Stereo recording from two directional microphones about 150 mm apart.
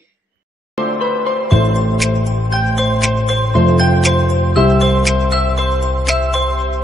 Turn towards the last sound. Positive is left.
turn(degrees=0)  # may be behind; listen again after turning